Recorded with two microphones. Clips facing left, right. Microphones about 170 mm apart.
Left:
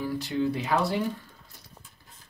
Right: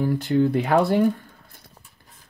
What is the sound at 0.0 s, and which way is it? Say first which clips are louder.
Speech: right 7 dB; 55° right (ahead or behind).